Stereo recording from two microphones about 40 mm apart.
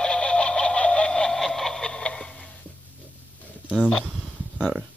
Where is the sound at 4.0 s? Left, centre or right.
Right.